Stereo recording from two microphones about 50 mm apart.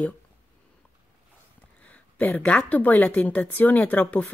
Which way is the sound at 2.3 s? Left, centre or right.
Left.